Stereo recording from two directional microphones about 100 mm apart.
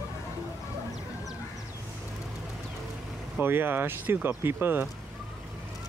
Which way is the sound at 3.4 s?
20° right (ahead or behind).